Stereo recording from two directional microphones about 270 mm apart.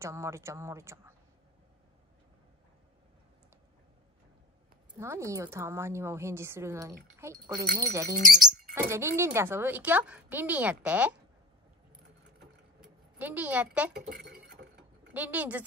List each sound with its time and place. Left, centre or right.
0.0 s speech: centre
4.9 s speech: centre
13.2 s a woman's voice: centre
14.3 s glass: right
15.1 s a woman's voice: centre